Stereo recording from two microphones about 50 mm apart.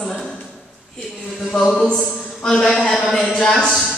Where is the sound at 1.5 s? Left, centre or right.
Centre.